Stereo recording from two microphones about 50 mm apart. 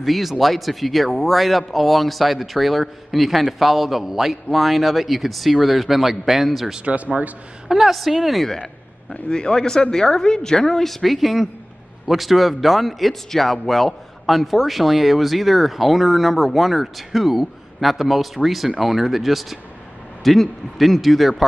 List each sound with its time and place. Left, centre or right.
0.0 s speech: centre
6.8 s speech: right
7.6 s speech: centre
9.1 s a woman's voice: centre